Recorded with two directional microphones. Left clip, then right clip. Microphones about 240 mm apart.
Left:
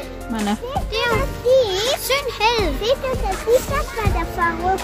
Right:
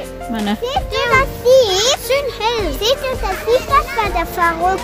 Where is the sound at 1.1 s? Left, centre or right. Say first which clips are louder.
Right 7 dB; right.